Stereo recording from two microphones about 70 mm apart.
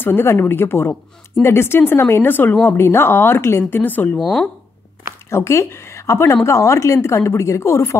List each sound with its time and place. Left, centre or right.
0.0 s speech: left
3.8 s speech: left
5.3 s speech: left